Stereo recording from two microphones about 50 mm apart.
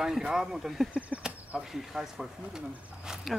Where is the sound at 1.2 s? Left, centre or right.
Centre.